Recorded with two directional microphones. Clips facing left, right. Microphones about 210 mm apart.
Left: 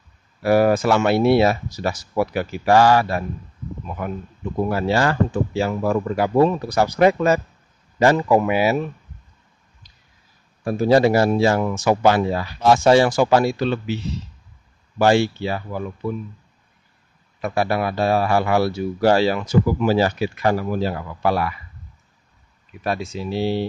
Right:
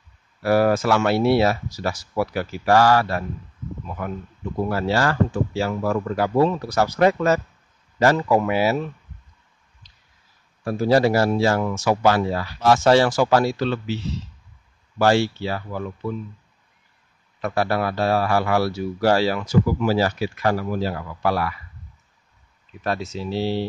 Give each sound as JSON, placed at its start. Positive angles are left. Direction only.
{"t": 0.4, "sound": "speech", "side_deg": 15}
{"t": 9.8, "sound": "finger snapping", "side_deg": 10}
{"t": 10.6, "sound": "speech", "side_deg": 15}
{"t": 17.4, "sound": "speech", "side_deg": 10}
{"t": 22.8, "sound": "speech", "side_deg": 10}